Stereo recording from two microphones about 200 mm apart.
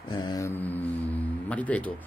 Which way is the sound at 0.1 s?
20° left (ahead or behind).